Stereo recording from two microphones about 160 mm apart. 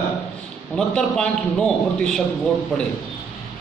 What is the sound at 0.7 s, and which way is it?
A man's voice, 5° left (ahead or behind).